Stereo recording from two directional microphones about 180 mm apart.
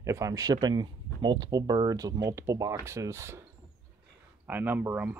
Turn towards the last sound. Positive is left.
turn(degrees=-10)  # may be behind; listen again after turning